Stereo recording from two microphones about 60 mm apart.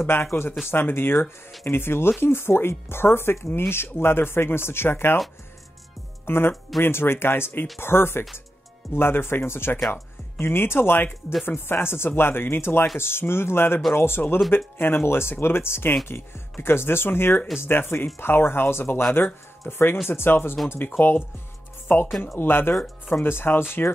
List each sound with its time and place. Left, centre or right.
0.0 s speech: left
6.2 s speech: left